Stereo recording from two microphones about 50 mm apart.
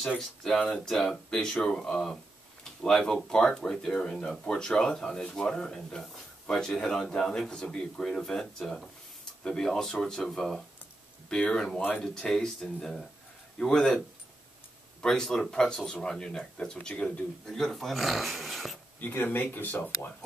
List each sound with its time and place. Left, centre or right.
0.2 s speech: centre
0.6 s speech: centre
11.2 s speech: centre
15.0 s speech: centre
17.5 s speech: centre
18.9 s speech: left